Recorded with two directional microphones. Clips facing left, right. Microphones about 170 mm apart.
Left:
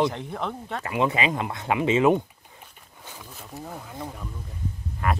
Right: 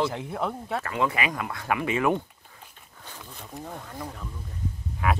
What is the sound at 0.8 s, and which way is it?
Speech, 20° left (ahead or behind).